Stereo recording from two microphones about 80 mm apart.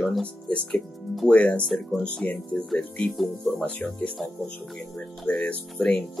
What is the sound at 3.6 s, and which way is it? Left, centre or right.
Speech, centre.